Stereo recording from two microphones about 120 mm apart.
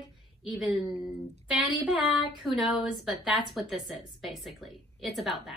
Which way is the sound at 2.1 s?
Centre (ahead or behind).